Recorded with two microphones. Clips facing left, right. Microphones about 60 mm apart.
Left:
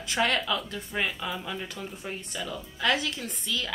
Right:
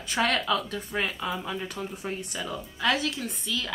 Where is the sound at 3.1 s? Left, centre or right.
Centre.